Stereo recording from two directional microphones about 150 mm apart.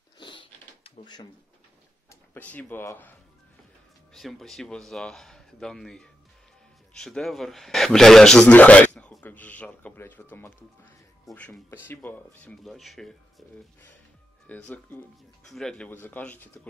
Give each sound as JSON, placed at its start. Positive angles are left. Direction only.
{"t": 0.2, "sound": "a sound", "side_deg": 35}
{"t": 2.0, "sound": "speech", "side_deg": 10}
{"t": 4.1, "sound": "speech", "side_deg": 0}
{"t": 11.2, "sound": "speech", "side_deg": 5}
{"t": 12.6, "sound": "speech", "side_deg": 0}